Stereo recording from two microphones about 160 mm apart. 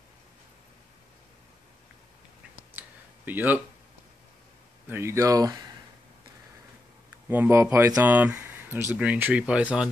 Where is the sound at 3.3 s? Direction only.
10° right (ahead or behind).